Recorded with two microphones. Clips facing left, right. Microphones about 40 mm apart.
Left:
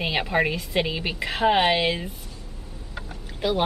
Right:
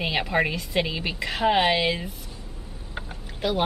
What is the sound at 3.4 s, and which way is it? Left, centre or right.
Speech, centre.